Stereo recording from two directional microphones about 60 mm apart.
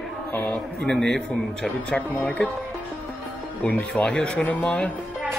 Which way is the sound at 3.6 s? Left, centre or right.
Centre.